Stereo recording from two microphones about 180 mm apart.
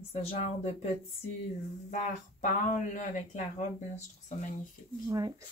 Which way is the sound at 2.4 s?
45° left (ahead or behind).